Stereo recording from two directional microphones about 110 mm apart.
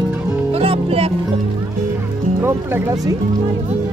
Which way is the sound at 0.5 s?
65° right (ahead or behind).